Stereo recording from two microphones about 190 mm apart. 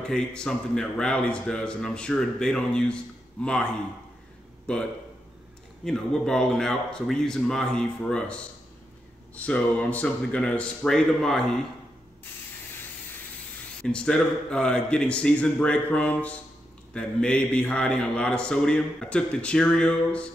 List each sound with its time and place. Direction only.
0.0 s a man's voice: 5° left (ahead or behind)
4.7 s a man's voice: 5° left (ahead or behind)
5.9 s a man's voice: 5° left (ahead or behind)
13.8 s a man's voice: 5° left (ahead or behind)